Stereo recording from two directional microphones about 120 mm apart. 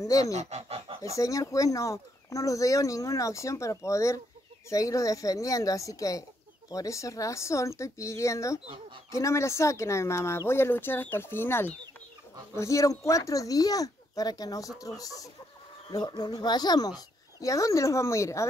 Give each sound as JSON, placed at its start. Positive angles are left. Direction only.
{"t": 0.0, "sound": "goose", "side_deg": 30}
{"t": 0.3, "sound": "goose", "side_deg": -65}
{"t": 1.0, "sound": "speech", "side_deg": 25}